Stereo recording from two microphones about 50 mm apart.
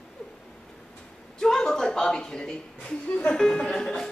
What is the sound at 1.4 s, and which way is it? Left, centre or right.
A woman's voice, centre.